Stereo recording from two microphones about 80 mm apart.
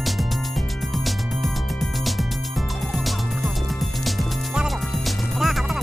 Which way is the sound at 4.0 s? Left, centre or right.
Centre.